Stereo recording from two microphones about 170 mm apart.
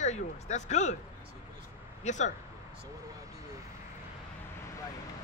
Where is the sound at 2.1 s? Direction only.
45° left (ahead or behind).